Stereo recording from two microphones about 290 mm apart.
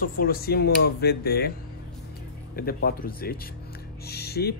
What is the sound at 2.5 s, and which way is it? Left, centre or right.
Speech, left.